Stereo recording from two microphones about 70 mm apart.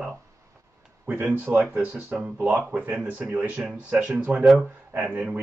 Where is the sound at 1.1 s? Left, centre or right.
Centre.